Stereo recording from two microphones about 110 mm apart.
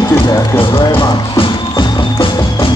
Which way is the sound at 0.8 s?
35° left (ahead or behind).